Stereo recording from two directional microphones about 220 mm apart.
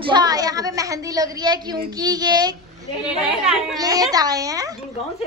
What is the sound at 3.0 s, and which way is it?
Speech, centre (ahead or behind).